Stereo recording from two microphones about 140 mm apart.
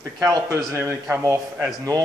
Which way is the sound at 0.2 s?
25° right (ahead or behind).